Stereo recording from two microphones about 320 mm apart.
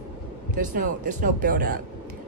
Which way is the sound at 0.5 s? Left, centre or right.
Right.